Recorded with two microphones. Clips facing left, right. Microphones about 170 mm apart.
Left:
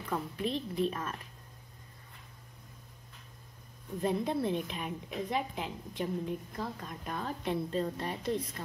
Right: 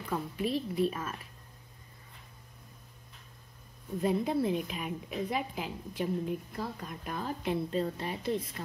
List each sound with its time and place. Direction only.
0.1 s a woman's voice: 5° right (ahead or behind)
4.0 s a woman's voice: 5° right (ahead or behind)